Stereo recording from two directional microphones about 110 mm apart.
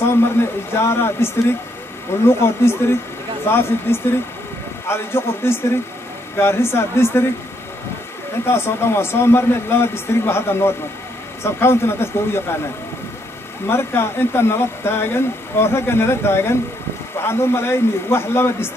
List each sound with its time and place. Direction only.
0.2 s a sound: 20° left (ahead or behind)
2.2 s speech: 20° left (ahead or behind)
8.5 s speech: 20° left (ahead or behind)
13.7 s speech: 20° left (ahead or behind)